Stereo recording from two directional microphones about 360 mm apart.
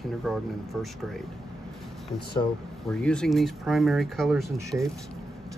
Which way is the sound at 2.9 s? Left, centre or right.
Centre.